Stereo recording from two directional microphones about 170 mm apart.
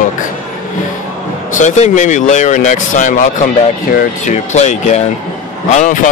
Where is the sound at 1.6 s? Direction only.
45° left (ahead or behind).